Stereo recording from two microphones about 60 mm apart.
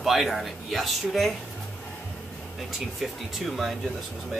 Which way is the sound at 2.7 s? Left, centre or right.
Centre.